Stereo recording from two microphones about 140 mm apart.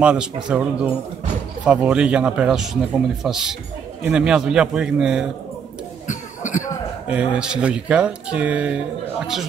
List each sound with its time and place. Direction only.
0.0 s a man's voice: 5° right (ahead or behind)
6.0 s cough: 65° left (ahead or behind)
7.1 s speech: 5° right (ahead or behind)